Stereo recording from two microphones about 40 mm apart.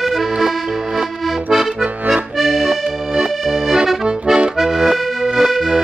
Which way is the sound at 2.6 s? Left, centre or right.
Right.